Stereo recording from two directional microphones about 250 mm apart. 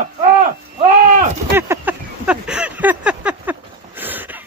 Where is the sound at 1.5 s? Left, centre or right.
Centre.